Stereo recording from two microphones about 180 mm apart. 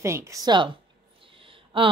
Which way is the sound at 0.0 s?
15° right (ahead or behind).